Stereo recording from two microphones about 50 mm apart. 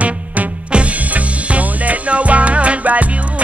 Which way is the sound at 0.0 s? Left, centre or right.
Right.